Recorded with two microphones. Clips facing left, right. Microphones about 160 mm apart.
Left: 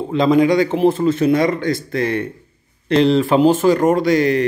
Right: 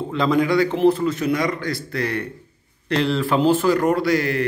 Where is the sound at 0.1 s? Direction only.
20° left (ahead or behind).